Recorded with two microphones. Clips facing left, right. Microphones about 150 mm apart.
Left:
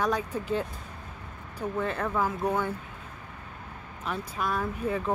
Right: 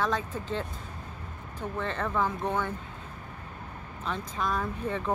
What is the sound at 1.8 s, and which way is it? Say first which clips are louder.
Speech: left 1 dB; 10° left (ahead or behind).